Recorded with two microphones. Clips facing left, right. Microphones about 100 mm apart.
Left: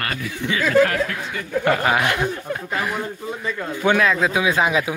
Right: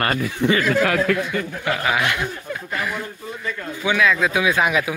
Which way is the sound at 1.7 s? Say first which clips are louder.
Left 3 dB; 40° left (ahead or behind).